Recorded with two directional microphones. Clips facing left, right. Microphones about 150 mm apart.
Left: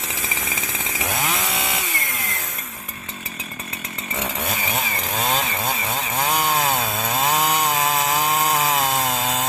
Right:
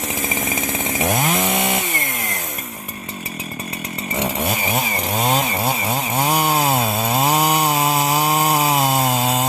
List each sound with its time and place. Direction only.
0.8 s chainsaw: 45° right (ahead or behind)
5.1 s chainsaw: 10° right (ahead or behind)